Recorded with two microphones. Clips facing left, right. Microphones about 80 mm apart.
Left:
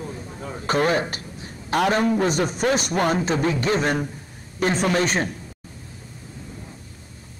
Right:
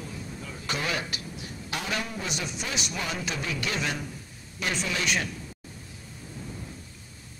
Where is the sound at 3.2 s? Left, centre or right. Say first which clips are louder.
Left 10 dB; left.